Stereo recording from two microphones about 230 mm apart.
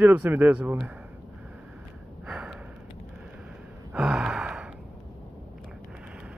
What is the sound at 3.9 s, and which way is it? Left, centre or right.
Gasp, centre.